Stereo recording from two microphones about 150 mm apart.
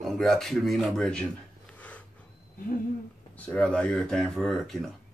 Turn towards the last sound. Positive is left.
turn(degrees=0)  # may be behind; listen again after turning